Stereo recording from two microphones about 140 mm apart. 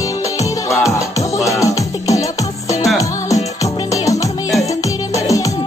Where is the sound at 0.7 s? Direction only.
20° left (ahead or behind).